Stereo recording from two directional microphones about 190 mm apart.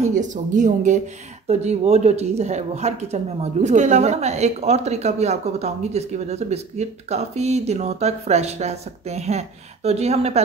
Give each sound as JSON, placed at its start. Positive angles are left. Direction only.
{"t": 0.0, "sound": "speech", "side_deg": -40}